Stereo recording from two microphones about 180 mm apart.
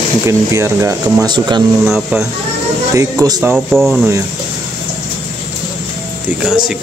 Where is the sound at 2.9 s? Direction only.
15° right (ahead or behind).